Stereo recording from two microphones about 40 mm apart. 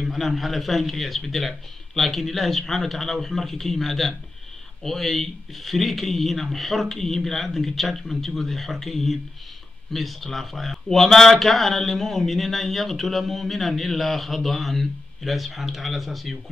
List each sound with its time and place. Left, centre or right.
0.1 s a man's voice: centre